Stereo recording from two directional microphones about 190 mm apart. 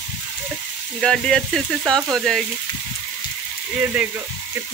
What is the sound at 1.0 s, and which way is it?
Speech, 5° left (ahead or behind).